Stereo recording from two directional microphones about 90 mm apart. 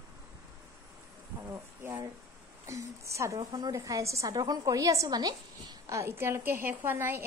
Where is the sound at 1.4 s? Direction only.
25° right (ahead or behind); by 5.9 s 45° right (ahead or behind).